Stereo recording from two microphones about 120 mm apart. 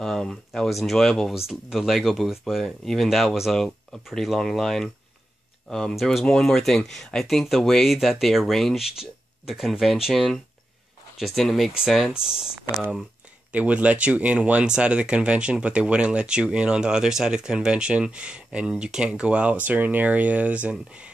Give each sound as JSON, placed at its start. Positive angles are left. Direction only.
{"t": 0.0, "sound": "speech", "side_deg": 5}
{"t": 13.5, "sound": "speech", "side_deg": -10}